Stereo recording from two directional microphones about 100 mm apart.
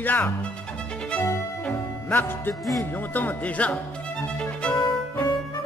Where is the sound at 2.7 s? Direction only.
20° left (ahead or behind).